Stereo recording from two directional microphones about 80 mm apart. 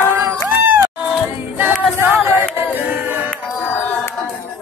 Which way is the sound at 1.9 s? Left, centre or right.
Right.